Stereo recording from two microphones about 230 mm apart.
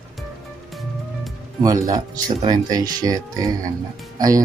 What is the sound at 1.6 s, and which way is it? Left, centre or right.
Speech, centre.